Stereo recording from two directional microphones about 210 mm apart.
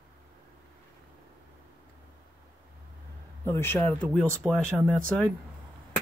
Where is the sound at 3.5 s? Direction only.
10° left (ahead or behind).